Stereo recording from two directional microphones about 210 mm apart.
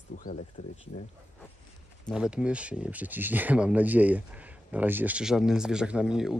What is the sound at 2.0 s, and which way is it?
Speech, 5° right (ahead or behind).